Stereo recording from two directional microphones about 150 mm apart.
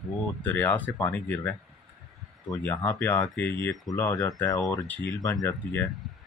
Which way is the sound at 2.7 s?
15° left (ahead or behind).